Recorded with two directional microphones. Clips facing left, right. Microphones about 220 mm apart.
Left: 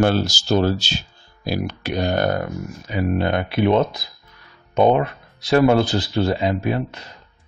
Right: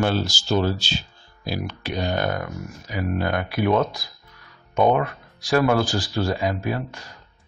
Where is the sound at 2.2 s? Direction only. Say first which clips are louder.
Left 5 dB; 35° left (ahead or behind).